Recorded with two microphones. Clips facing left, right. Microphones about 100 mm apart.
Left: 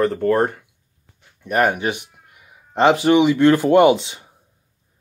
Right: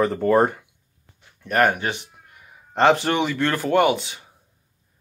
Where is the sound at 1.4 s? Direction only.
15° left (ahead or behind).